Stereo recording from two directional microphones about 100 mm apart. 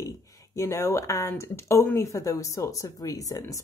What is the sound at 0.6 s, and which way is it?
Speech, 30° left (ahead or behind).